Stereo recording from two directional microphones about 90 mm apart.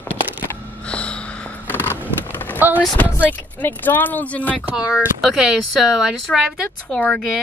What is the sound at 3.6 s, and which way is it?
Speech, 20° left (ahead or behind).